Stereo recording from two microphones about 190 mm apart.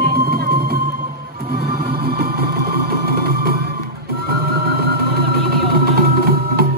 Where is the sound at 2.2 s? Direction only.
50° right (ahead or behind).